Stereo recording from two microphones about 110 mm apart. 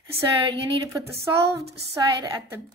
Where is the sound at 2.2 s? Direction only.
30° right (ahead or behind).